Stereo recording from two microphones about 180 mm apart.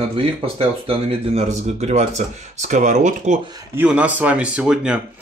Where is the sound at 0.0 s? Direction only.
30° right (ahead or behind).